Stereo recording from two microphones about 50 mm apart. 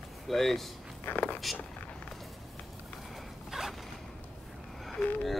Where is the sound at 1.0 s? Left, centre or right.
Left.